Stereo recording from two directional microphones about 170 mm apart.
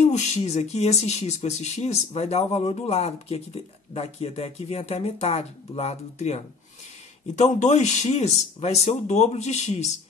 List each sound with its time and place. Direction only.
0.0 s speech: 40° left (ahead or behind)